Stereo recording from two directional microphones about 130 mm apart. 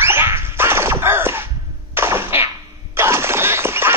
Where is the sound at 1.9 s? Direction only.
20° right (ahead or behind).